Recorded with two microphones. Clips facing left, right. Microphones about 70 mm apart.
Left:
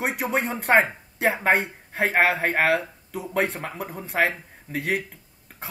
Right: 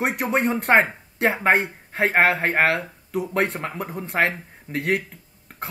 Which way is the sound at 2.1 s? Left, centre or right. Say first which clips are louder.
Right 2 dB; right.